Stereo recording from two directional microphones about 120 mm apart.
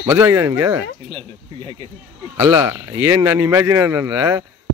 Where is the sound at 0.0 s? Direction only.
20° right (ahead or behind).